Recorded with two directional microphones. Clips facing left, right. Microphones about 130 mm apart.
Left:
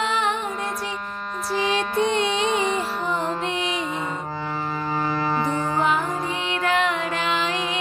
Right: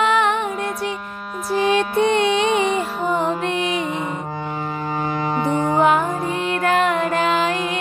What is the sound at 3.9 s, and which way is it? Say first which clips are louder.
Music: right 3 dB; 10° right (ahead or behind).